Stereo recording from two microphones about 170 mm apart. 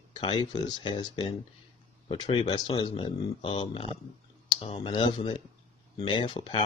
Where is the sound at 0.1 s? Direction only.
30° left (ahead or behind).